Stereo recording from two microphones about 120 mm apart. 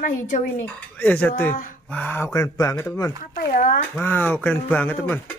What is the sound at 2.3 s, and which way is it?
Speech, 30° left (ahead or behind).